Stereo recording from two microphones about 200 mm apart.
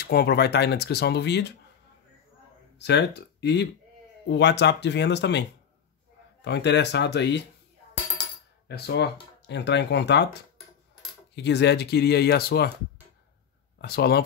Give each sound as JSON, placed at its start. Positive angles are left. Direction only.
{"t": 0.0, "sound": "speech", "side_deg": 50}
{"t": 2.8, "sound": "speech", "side_deg": 55}
{"t": 6.4, "sound": "speech", "side_deg": 60}
{"t": 8.6, "sound": "speech", "side_deg": 55}
{"t": 11.3, "sound": "speech", "side_deg": 60}
{"t": 13.7, "sound": "speech", "side_deg": 50}